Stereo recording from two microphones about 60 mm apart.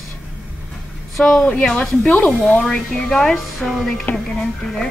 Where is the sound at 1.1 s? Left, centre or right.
Centre.